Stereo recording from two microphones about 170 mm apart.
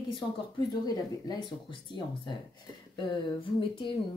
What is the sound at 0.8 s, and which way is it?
Speech, 25° left (ahead or behind).